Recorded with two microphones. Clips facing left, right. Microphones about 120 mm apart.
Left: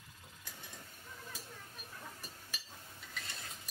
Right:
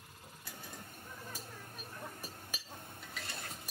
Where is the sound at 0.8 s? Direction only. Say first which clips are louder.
Right 3 dB; 55° right (ahead or behind).